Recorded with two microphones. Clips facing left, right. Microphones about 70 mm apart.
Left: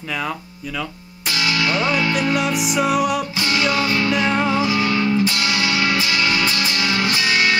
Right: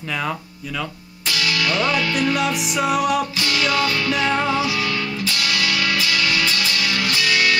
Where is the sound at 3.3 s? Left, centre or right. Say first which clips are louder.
Left 2 dB; left.